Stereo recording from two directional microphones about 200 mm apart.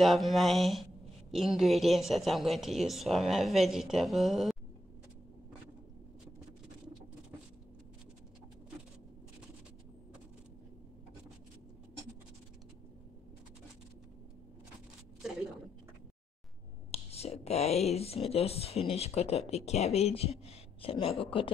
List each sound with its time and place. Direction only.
0.0 s a woman's voice: centre (ahead or behind)
16.9 s speech: 30° left (ahead or behind)